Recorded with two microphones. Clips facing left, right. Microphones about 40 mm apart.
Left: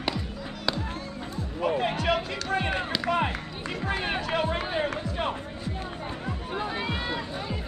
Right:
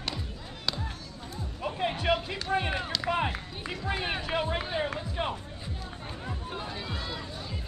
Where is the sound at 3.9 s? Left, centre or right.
Left.